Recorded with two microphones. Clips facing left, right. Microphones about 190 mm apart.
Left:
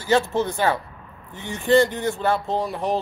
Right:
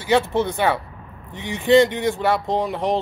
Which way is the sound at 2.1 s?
20° right (ahead or behind).